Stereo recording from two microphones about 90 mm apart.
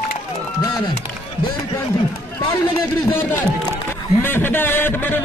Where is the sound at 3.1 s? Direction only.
25° left (ahead or behind).